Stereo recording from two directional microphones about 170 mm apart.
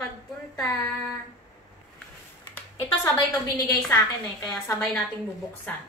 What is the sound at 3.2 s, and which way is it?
Speech, 15° left (ahead or behind).